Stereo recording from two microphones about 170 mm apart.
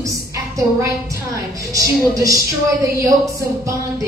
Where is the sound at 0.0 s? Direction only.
20° right (ahead or behind).